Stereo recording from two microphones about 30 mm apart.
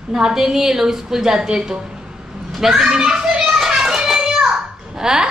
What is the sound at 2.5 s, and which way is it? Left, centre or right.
Speech, centre.